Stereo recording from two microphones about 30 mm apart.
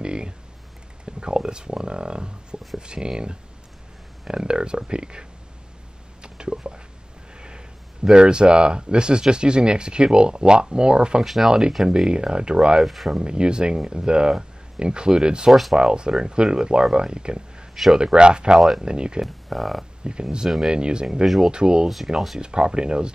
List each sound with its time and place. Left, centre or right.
0.0 s a sound: right
1.0 s speech: right
6.2 s a sound: right
7.3 s speech: right
12.8 s speech: centre
13.1 s speech: right
19.2 s speech: centre
20.0 s speech: right
21.8 s speech: centre
22.4 s speech: right